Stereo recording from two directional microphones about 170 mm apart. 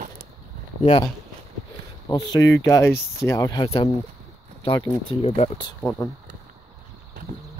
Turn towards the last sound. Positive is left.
turn(degrees=10)  # may be behind; listen again after turning